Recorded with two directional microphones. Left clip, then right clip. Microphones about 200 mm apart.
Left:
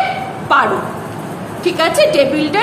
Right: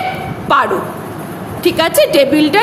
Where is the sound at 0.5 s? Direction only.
45° right (ahead or behind).